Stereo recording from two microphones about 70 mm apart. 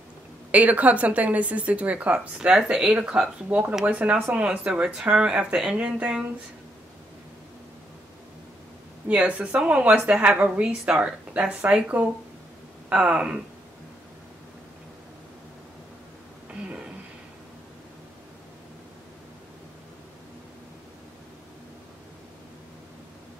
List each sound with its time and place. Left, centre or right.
0.5 s speech: right
2.3 s speech: centre
9.0 s speech: centre